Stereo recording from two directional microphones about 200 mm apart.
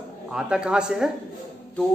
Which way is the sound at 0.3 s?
5° right (ahead or behind).